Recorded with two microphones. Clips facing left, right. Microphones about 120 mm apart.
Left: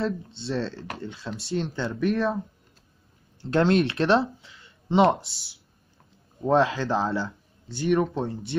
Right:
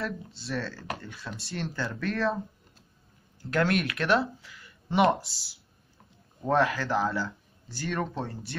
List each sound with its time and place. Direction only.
0.0 s speech: 25° left (ahead or behind)
3.3 s speech: 30° left (ahead or behind)